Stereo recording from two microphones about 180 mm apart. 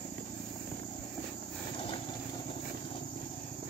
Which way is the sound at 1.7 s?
30° left (ahead or behind).